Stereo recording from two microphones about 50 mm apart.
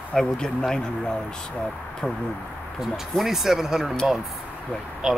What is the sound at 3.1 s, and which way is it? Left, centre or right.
Speech, centre.